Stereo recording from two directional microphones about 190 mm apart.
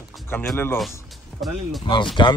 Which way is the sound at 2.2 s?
25° left (ahead or behind).